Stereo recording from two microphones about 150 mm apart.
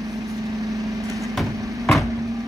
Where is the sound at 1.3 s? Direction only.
Centre (ahead or behind).